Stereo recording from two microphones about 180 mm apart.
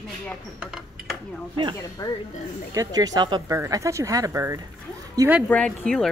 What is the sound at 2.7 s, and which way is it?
Speech, 20° right (ahead or behind).